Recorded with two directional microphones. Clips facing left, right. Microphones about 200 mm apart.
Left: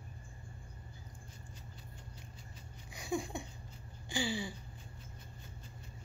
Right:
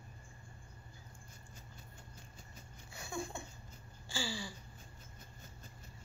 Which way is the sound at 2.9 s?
15° left (ahead or behind).